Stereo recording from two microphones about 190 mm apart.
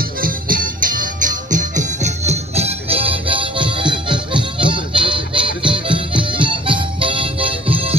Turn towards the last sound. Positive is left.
turn(degrees=-30)  # may be behind; listen again after turning